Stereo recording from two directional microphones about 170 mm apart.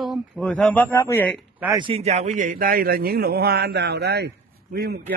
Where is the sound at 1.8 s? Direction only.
35° right (ahead or behind).